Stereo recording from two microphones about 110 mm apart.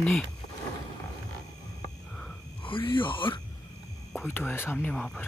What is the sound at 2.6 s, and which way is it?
Speech, 50° left (ahead or behind).